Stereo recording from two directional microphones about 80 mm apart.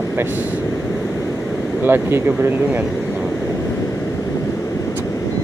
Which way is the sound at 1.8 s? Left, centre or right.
Right.